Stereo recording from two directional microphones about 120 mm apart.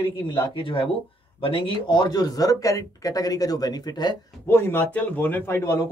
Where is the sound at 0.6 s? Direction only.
50° left (ahead or behind).